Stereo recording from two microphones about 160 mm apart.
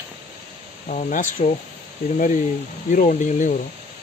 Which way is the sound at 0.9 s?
55° left (ahead or behind).